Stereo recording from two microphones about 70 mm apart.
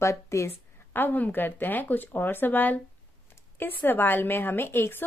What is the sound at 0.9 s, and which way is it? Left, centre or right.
A woman's voice, left.